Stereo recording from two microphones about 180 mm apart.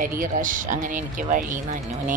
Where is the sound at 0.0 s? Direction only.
50° right (ahead or behind).